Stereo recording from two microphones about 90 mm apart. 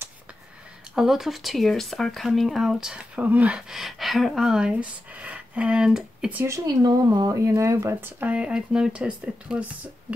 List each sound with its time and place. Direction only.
0.9 s speech: 5° right (ahead or behind)
3.7 s speech: centre (ahead or behind)
6.3 s speech: 30° right (ahead or behind)
6.8 s speech: 50° right (ahead or behind); by 8.1 s 30° right (ahead or behind)
8.2 s speech: 15° right (ahead or behind)